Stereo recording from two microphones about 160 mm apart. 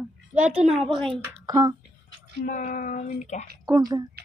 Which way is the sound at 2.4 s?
55° left (ahead or behind).